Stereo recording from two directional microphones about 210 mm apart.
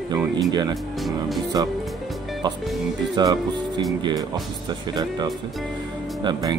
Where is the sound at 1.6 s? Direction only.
20° right (ahead or behind).